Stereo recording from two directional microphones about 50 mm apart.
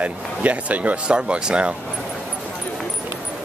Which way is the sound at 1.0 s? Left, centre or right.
Right.